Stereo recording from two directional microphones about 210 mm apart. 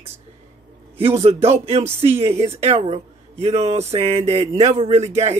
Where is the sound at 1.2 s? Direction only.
30° right (ahead or behind).